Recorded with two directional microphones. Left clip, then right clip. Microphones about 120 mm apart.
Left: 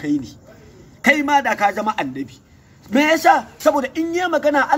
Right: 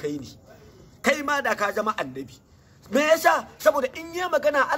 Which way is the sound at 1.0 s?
35° right (ahead or behind).